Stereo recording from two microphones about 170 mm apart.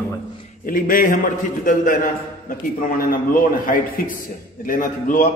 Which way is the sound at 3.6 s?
55° left (ahead or behind).